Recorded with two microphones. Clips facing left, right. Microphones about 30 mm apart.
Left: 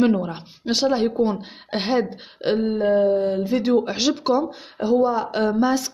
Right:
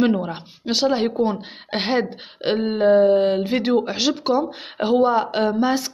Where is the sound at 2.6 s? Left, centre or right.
Right.